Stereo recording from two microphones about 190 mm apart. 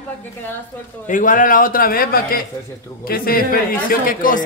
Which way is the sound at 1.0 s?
45° left (ahead or behind).